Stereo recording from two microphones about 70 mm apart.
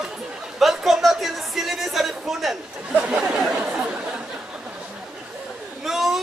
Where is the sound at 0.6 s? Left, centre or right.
Centre.